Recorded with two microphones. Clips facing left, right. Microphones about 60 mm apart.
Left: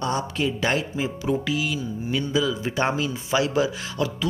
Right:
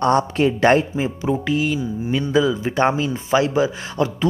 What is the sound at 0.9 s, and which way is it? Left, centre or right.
Speech, right.